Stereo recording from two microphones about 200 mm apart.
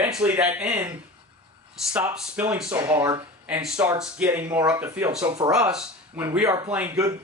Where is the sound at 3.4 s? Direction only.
5° right (ahead or behind).